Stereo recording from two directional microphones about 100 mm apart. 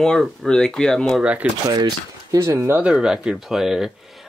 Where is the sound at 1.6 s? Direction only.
45° right (ahead or behind).